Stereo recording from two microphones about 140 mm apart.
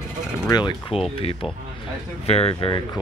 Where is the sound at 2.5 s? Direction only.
35° left (ahead or behind).